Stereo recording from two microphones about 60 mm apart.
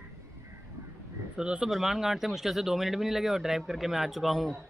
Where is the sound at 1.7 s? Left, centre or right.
Centre.